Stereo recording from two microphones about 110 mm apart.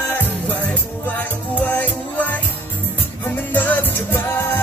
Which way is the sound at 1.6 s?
15° left (ahead or behind).